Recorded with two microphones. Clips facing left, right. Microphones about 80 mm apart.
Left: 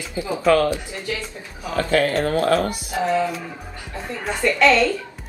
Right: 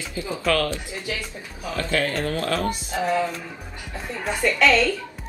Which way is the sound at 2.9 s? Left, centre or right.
Centre.